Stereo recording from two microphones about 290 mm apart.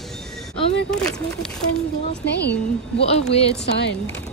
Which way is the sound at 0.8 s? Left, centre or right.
Centre.